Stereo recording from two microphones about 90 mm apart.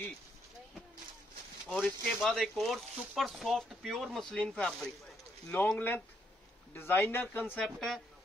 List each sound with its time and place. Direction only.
1.7 s speech: 10° left (ahead or behind); by 7.5 s 25° left (ahead or behind)
7.5 s speech: 5° left (ahead or behind)